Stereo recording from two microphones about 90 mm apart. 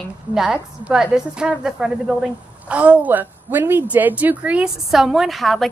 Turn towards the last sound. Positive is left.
turn(degrees=0)  # may be behind; listen again after turning